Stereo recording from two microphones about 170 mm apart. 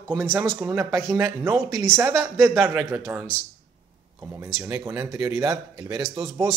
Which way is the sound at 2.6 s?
10° right (ahead or behind).